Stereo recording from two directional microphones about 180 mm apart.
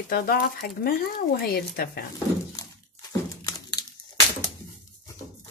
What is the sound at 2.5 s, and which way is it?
Crumpling, 20° left (ahead or behind).